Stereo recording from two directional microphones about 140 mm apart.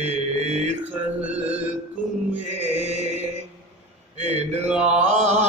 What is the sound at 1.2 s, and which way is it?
Mantra, 10° right (ahead or behind).